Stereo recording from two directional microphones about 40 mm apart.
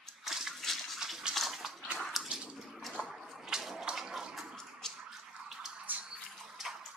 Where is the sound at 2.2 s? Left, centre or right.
Right.